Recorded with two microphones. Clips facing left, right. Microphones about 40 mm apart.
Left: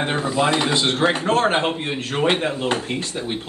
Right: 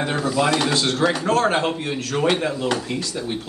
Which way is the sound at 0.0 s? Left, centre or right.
Left.